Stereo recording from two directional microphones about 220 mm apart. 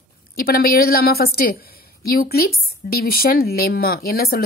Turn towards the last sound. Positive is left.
turn(degrees=45)  # may be behind; listen again after turning